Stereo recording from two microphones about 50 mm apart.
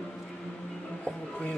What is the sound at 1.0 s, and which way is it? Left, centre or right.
Music, left.